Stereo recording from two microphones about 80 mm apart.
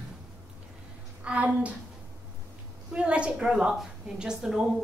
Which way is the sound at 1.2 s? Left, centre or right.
Centre.